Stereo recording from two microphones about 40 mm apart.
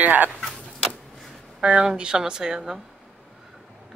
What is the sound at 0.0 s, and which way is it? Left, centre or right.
Speech, right.